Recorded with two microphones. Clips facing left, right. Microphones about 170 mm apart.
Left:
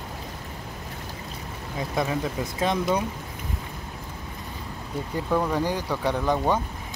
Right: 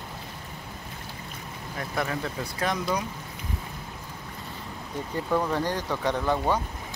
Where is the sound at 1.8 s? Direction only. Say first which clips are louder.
Left 4 dB; 15° left (ahead or behind).